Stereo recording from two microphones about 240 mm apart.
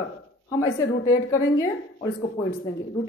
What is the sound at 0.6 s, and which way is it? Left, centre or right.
Speech, centre.